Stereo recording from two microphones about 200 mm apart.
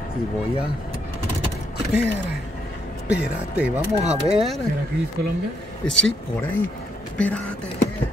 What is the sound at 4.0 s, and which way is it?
Speech, 30° right (ahead or behind).